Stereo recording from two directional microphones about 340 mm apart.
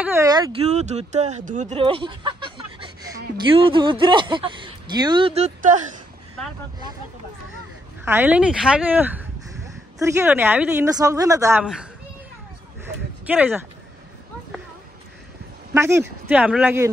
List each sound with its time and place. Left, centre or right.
0.0 s speech: centre
8.0 s speech: centre
13.3 s speech: centre
15.7 s speech: centre